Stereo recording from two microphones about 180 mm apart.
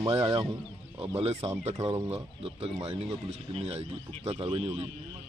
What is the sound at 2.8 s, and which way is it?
A man's voice, 35° right (ahead or behind).